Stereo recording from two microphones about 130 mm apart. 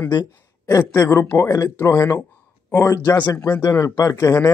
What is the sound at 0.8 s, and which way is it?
Speech, 20° left (ahead or behind).